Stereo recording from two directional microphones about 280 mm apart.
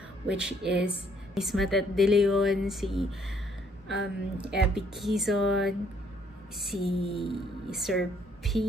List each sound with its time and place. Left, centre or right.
0.3 s speech: centre
6.8 s a sound: centre
7.3 s speech: centre